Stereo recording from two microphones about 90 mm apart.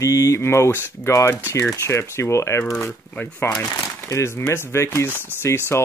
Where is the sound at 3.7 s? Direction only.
35° left (ahead or behind).